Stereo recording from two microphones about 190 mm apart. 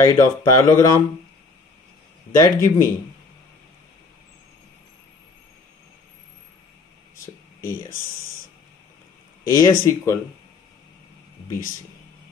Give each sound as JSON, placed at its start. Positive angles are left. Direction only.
{"t": 0.0, "sound": "speech", "side_deg": 20}
{"t": 2.3, "sound": "speech", "side_deg": 15}
{"t": 9.5, "sound": "speech", "side_deg": 20}